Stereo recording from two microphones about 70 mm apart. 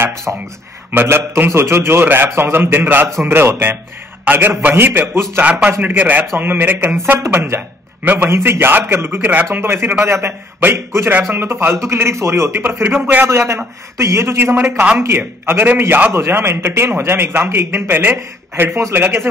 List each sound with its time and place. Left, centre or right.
0.9 s a man's voice: right
5.4 s a man's voice: centre
11.2 s a man's voice: right
18.9 s a man's voice: right